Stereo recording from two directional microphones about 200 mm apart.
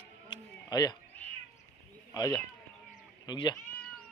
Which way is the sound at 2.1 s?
20° left (ahead or behind).